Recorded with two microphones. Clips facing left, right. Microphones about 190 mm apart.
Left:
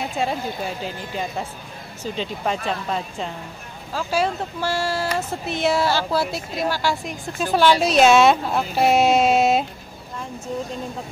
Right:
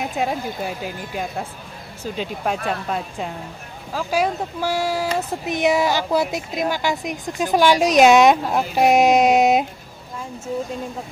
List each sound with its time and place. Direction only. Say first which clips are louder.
0.0 s speech: right 1 dB; 10° right (ahead or behind)